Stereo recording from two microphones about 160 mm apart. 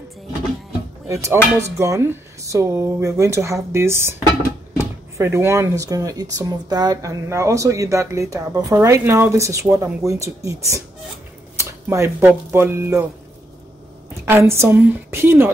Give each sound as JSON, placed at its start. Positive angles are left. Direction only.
{"t": 1.0, "sound": "speech", "side_deg": -15}
{"t": 14.2, "sound": "speech", "side_deg": -15}